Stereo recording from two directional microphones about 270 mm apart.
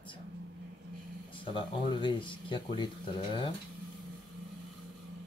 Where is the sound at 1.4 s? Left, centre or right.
Centre.